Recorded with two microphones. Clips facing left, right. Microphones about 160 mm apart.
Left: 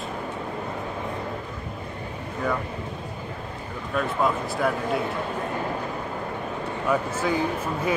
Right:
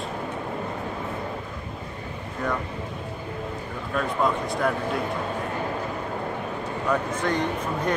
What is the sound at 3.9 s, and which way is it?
Speech, centre (ahead or behind).